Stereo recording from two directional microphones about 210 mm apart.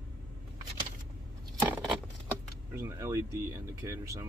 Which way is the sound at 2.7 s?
15° right (ahead or behind).